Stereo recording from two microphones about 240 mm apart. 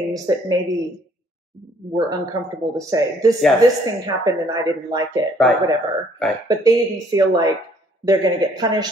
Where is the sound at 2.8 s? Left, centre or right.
Centre.